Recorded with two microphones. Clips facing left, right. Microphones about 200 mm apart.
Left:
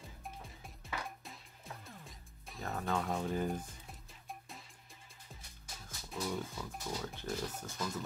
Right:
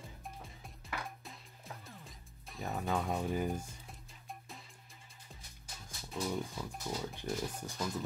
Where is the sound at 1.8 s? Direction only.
Centre (ahead or behind).